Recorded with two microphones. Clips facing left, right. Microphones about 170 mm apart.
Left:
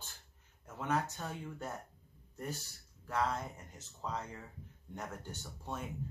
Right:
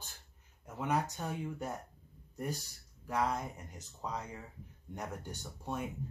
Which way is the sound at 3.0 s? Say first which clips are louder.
Right 1 dB; 15° right (ahead or behind).